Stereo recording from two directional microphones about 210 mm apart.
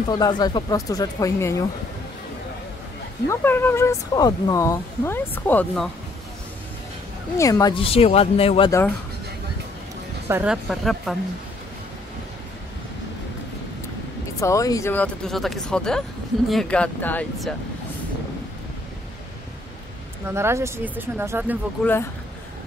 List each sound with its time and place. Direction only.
0.1 s speech: 20° left (ahead or behind)
3.3 s speech: 10° left (ahead or behind)
7.3 s speech: 15° left (ahead or behind)
10.2 s speech: 10° right (ahead or behind)
14.4 s speech: 15° left (ahead or behind)
20.2 s speech: 10° right (ahead or behind)
21.8 s speech: 5° left (ahead or behind)